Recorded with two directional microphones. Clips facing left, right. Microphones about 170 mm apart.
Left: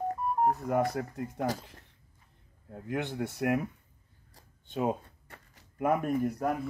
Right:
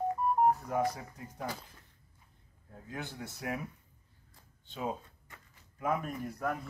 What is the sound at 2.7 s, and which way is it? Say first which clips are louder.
Speech: left 9 dB; 70° left (ahead or behind).